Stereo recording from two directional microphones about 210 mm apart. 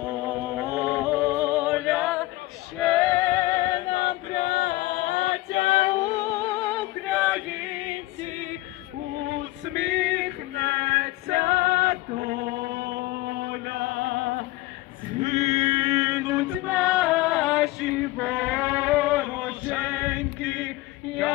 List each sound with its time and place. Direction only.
0.0 s music: 5° right (ahead or behind)
7.8 s music: 25° right (ahead or behind)
9.2 s male singing: 55° right (ahead or behind)
15.2 s female singing: 30° right (ahead or behind)
15.6 s music: 20° right (ahead or behind)
20.4 s a sound: 5° right (ahead or behind)